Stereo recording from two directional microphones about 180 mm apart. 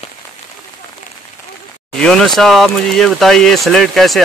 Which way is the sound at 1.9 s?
5° left (ahead or behind).